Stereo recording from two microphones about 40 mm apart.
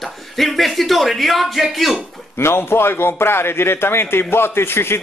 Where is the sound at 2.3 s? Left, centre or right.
Left.